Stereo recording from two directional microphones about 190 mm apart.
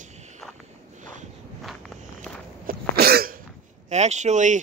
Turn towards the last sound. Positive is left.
turn(degrees=-40)  # may be behind; listen again after turning